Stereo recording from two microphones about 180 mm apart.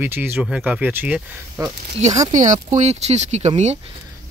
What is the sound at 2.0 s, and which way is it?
Speech, 40° right (ahead or behind).